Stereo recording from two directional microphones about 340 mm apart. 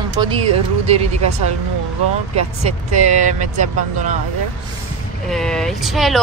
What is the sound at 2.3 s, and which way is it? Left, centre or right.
Speech, centre.